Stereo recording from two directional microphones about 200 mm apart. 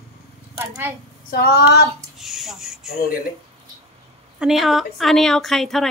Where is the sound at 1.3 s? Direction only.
50° left (ahead or behind).